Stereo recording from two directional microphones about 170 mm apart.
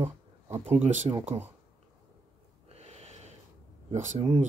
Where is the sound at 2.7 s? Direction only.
40° right (ahead or behind).